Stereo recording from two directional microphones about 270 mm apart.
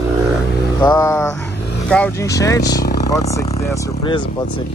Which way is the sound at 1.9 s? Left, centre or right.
Centre.